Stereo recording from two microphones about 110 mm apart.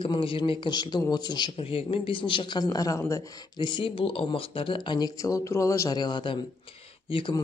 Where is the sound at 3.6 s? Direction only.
45° left (ahead or behind); by 6.0 s 30° left (ahead or behind).